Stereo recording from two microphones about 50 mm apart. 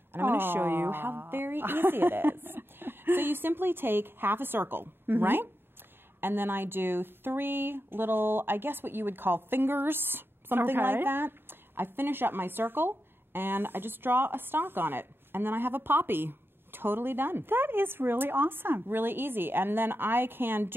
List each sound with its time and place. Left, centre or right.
0.1 s speech: right